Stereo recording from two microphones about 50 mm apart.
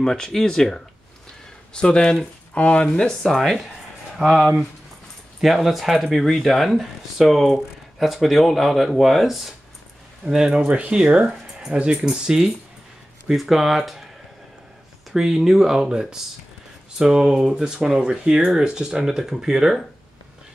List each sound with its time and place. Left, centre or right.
0.0 s speech: centre
4.2 s speech: centre
10.2 s speech: centre
15.1 s speech: centre